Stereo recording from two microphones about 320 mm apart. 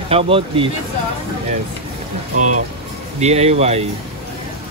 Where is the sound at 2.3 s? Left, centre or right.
Right.